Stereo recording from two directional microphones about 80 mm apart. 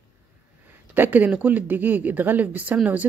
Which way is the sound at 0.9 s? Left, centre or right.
Right.